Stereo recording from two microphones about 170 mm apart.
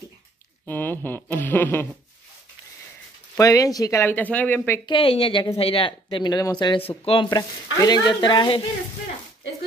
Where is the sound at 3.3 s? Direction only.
20° left (ahead or behind).